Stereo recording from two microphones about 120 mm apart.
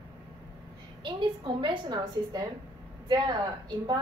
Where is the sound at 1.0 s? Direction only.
45° right (ahead or behind).